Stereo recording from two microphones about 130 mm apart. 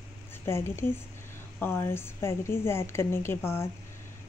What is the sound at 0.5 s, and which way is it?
Speech, 20° left (ahead or behind).